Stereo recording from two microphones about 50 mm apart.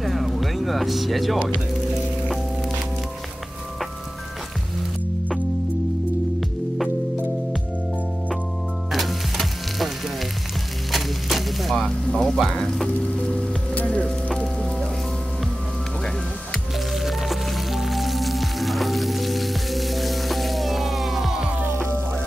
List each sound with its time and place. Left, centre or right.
0.0 s music: centre
8.9 s sizzle: centre
10.9 s wood: centre
11.8 s music: centre
13.7 s music: left
14.3 s music: centre
16.9 s music: centre
21.6 s music: right